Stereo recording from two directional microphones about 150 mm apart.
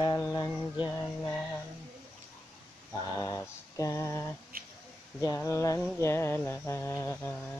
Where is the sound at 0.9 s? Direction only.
15° left (ahead or behind).